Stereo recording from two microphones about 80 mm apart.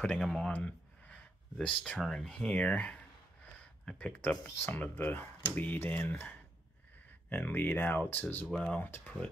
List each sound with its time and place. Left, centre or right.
0.0 s speech: centre
0.5 s a sound: centre
2.0 s speech: centre
8.5 s speech: centre
8.7 s speech: left